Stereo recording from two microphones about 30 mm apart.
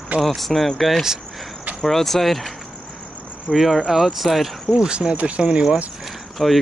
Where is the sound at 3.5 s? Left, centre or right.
Centre.